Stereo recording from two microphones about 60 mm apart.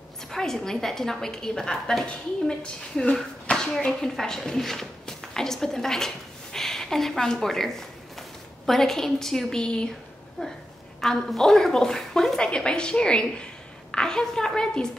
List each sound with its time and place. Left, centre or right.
0.3 s a woman's voice: centre